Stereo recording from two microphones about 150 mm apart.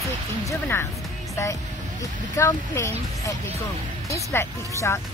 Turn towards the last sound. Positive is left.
turn(degrees=15)  # may be behind; listen again after turning